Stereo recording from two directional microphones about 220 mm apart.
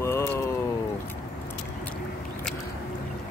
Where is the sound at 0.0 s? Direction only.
10° left (ahead or behind).